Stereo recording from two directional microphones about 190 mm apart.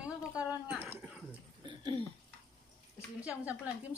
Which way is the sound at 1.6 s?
25° right (ahead or behind).